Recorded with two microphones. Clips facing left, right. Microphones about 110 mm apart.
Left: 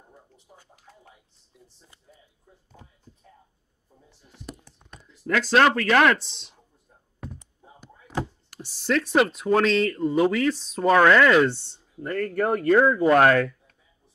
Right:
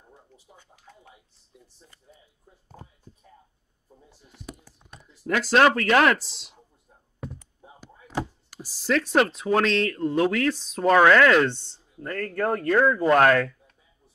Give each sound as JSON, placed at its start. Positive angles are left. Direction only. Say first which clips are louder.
{"t": 4.5, "sound": "speech", "louder": "left 1 dB", "side_deg": -5}
{"t": 8.5, "sound": "speech", "louder": "even", "side_deg": 0}